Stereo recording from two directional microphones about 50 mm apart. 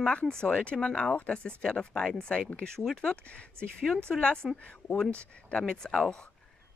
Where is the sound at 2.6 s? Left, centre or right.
Centre.